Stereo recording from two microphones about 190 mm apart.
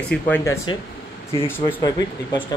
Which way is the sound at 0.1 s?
10° left (ahead or behind).